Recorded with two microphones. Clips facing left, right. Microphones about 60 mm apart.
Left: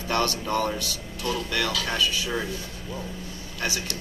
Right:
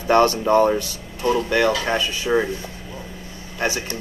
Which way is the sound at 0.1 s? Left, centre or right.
Right.